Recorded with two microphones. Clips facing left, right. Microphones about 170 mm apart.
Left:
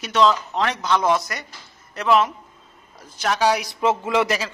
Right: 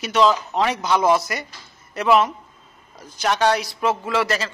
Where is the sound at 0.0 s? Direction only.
5° right (ahead or behind).